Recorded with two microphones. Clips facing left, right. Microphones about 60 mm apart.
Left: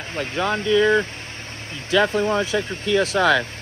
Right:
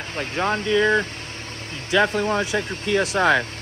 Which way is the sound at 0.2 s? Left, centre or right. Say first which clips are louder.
Even; right.